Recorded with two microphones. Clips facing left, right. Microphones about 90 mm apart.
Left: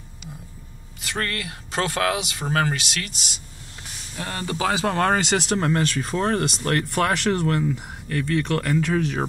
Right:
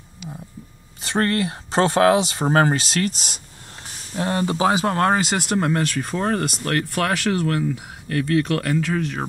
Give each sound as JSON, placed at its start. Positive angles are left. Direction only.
{"t": 1.0, "sound": "speech", "side_deg": -30}
{"t": 4.1, "sound": "speech", "side_deg": -25}